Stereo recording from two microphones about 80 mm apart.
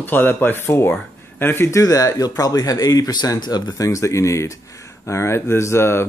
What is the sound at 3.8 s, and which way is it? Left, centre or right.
Speech, left.